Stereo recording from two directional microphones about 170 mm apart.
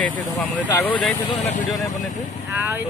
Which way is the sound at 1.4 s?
45° left (ahead or behind).